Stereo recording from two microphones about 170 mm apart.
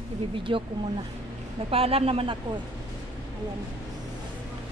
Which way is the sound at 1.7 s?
35° right (ahead or behind).